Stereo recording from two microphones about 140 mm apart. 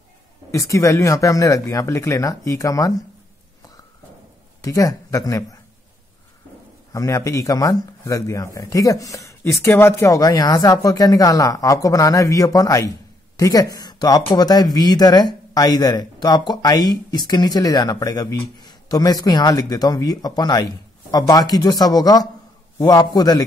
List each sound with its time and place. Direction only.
0.5 s speech: 20° left (ahead or behind)
4.6 s speech: 25° left (ahead or behind)
6.9 s speech: 25° left (ahead or behind)